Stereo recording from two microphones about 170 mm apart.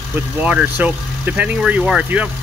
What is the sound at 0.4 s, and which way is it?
Speech, 10° right (ahead or behind).